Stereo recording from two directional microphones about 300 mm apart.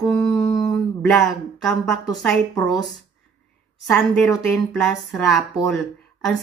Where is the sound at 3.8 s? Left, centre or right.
Centre.